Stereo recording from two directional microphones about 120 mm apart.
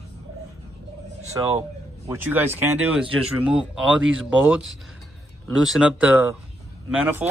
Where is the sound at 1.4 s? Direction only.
30° right (ahead or behind).